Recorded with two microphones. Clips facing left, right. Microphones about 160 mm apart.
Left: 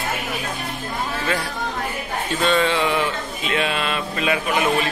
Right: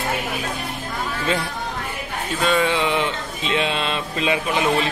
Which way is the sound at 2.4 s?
10° right (ahead or behind).